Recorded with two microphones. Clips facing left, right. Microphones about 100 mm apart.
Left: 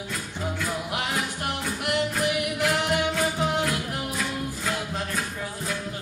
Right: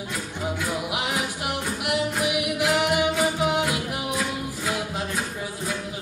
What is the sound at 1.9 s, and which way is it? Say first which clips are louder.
Music: even; 10° right (ahead or behind).